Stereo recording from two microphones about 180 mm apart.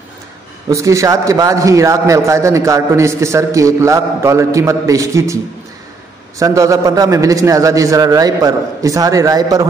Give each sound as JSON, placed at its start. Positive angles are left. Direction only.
{"t": 0.7, "sound": "a man's voice", "side_deg": -15}
{"t": 6.4, "sound": "a man's voice", "side_deg": -15}